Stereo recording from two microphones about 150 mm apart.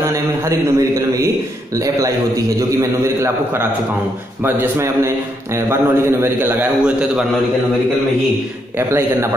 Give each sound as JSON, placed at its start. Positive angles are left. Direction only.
{"t": 0.0, "sound": "a man's voice", "side_deg": -20}
{"t": 8.7, "sound": "a man's voice", "side_deg": -15}